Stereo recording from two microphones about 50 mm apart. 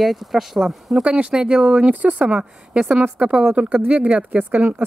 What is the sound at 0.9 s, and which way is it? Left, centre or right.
Speech, centre.